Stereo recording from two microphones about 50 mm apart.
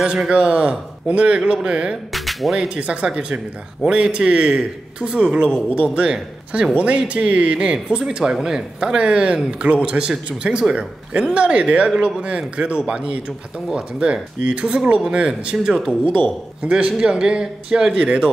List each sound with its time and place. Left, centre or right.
0.3 s speech: right
2.1 s music: centre
2.5 s a man's voice: centre
14.0 s a man's voice: right